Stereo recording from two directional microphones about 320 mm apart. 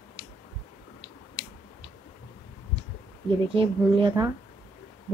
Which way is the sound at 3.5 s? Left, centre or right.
Centre.